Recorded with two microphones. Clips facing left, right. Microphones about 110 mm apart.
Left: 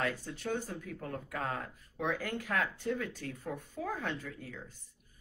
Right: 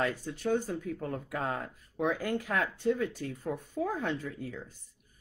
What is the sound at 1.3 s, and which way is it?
Speech, 25° right (ahead or behind).